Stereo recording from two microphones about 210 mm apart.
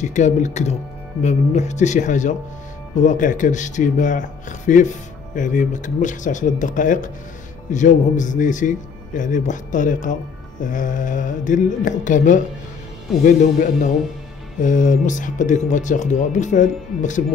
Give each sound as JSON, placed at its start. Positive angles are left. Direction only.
{"t": 0.0, "sound": "speech", "side_deg": 35}